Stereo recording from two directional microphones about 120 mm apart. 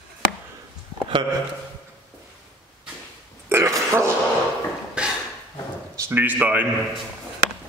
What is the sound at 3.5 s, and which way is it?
Burping, 20° right (ahead or behind).